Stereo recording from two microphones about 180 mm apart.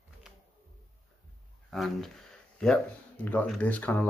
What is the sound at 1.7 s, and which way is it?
Speech, centre (ahead or behind).